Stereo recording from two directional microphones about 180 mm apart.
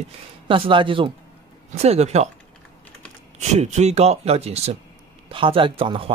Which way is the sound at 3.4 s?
40° right (ahead or behind).